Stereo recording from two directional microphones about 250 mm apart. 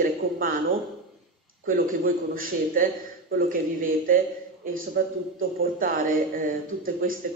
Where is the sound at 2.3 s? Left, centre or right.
Right.